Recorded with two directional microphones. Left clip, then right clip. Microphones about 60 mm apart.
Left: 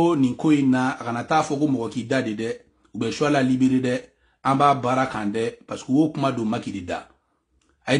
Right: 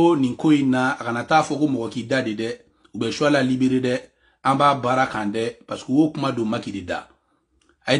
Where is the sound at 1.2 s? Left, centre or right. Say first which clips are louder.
Right 2 dB; left.